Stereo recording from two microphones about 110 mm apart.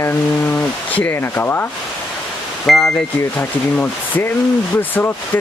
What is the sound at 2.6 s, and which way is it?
Speech, 5° left (ahead or behind).